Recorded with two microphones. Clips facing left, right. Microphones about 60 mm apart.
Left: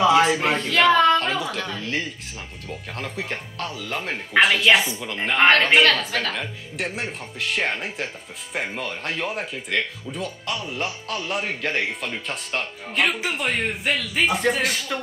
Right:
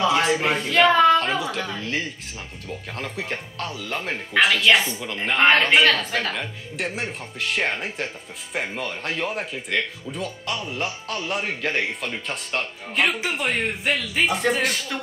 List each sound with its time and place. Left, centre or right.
0.0 s speech: centre
1.1 s a sound: centre
3.0 s speech: centre